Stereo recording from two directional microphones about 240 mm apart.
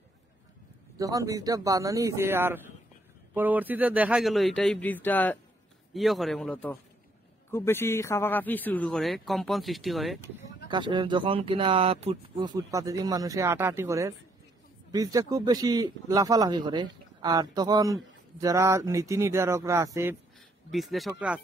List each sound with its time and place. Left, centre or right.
0.9 s speech: centre
10.7 s speech: centre
20.7 s speech: centre